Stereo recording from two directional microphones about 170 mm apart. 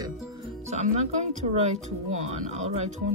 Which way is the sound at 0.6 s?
40° right (ahead or behind).